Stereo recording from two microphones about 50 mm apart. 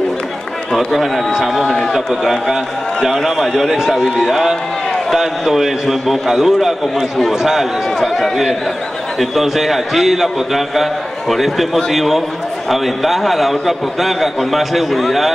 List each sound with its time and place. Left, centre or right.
0.7 s a man's voice: centre